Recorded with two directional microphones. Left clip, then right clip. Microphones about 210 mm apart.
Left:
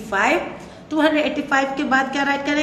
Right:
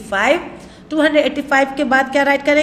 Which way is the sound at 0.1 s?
35° right (ahead or behind).